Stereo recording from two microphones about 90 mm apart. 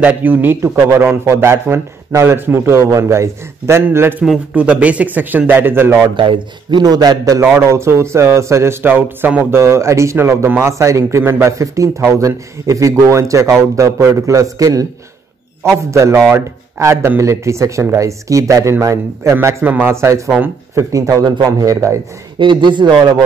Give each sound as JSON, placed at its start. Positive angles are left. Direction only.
{"t": 0.0, "sound": "a man's voice", "side_deg": -20}
{"t": 4.2, "sound": "a man's voice", "side_deg": -10}
{"t": 6.1, "sound": "a man's voice", "side_deg": -65}
{"t": 7.4, "sound": "a man's voice", "side_deg": -30}
{"t": 8.8, "sound": "a man's voice", "side_deg": -20}
{"t": 9.6, "sound": "a man's voice", "side_deg": -30}
{"t": 19.4, "sound": "a man's voice", "side_deg": -20}
{"t": 22.4, "sound": "speech", "side_deg": -60}